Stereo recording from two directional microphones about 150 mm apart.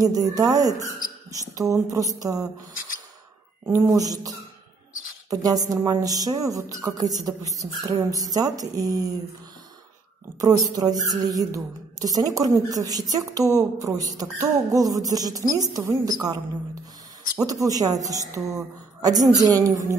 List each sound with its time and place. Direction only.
0.0 s speech: 25° right (ahead or behind)
3.6 s speech: 20° right (ahead or behind)
10.4 s speech: 25° right (ahead or behind)
17.4 s speech: 25° right (ahead or behind)